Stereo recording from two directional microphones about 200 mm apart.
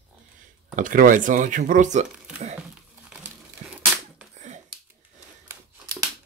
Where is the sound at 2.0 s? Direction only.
5° right (ahead or behind).